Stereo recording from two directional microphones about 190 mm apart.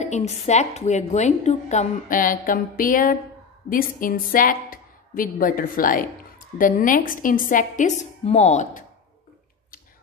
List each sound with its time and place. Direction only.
0.0 s a woman's voice: 35° left (ahead or behind)